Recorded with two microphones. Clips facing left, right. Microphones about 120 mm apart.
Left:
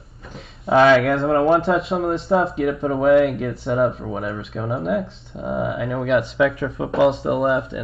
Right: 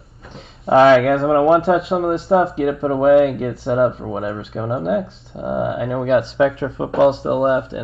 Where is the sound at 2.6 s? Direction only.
35° right (ahead or behind).